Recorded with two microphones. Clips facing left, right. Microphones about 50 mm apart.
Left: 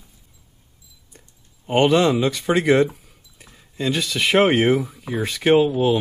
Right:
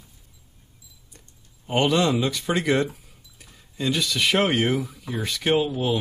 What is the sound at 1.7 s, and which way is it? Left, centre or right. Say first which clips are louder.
Speech: left 5 dB; centre.